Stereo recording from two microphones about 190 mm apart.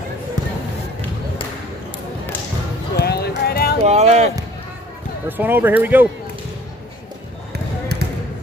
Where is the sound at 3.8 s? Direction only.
35° right (ahead or behind).